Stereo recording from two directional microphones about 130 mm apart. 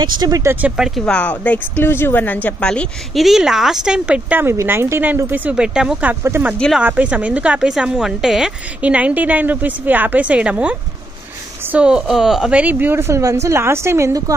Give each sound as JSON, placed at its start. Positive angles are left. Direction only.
{"t": 0.0, "sound": "speech", "side_deg": -35}
{"t": 0.4, "sound": "speech", "side_deg": -15}
{"t": 1.0, "sound": "a woman's voice", "side_deg": 10}